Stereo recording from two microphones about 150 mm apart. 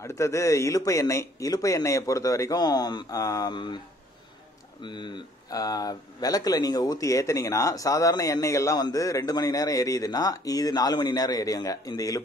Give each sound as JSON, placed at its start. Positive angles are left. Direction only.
{"t": 0.0, "sound": "speech", "side_deg": 20}
{"t": 4.8, "sound": "speech", "side_deg": 30}